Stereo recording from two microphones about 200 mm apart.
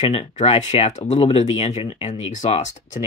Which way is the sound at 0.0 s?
30° left (ahead or behind).